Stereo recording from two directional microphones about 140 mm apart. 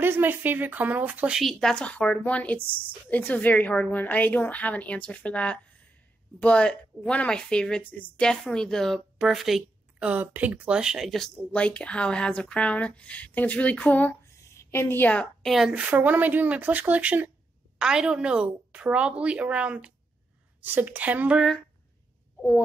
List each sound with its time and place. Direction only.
0.0 s a woman's voice: 15° right (ahead or behind)